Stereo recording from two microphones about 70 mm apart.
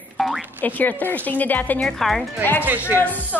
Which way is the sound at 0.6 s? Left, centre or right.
Left.